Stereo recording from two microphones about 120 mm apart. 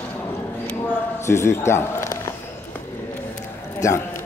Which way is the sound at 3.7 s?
25° left (ahead or behind).